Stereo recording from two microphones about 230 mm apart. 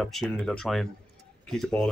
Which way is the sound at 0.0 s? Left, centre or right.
Centre.